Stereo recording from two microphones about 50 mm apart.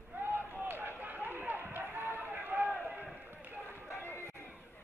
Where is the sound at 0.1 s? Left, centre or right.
Right.